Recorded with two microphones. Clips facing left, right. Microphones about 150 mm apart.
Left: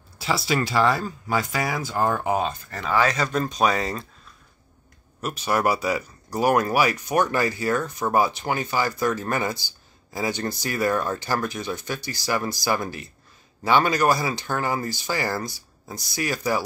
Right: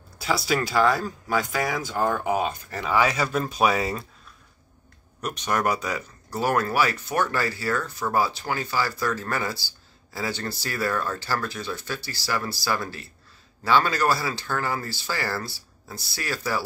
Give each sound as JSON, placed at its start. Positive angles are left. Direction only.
{"t": 0.2, "sound": "speech", "side_deg": 0}
{"t": 2.4, "sound": "speech", "side_deg": -10}
{"t": 5.2, "sound": "speech", "side_deg": 5}